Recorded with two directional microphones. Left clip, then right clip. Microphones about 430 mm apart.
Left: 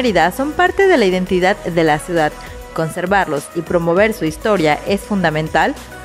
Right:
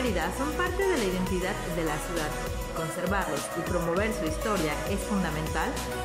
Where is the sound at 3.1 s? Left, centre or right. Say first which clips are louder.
Left 16 dB; left.